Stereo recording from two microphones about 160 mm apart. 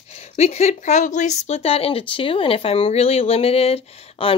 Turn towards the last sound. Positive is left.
turn(degrees=35)  # may be behind; listen again after turning